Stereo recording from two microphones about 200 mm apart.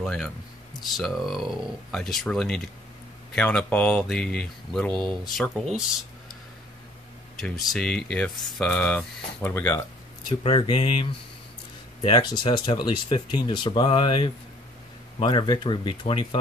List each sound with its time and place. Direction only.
0.0 s speech: 5° left (ahead or behind)
7.3 s speech: centre (ahead or behind)
10.2 s speech: 25° left (ahead or behind)